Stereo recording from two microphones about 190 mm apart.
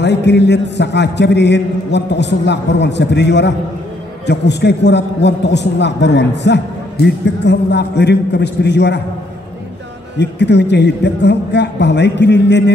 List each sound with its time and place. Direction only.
0.0 s a man's voice: 65° left (ahead or behind)
10.1 s a man's voice: 65° left (ahead or behind)